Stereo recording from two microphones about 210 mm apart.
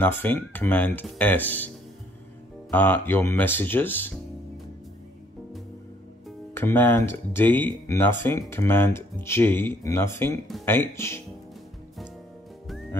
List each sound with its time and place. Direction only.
0.0 s speech: 10° left (ahead or behind)
2.7 s speech: 10° left (ahead or behind)
6.5 s speech: 10° left (ahead or behind)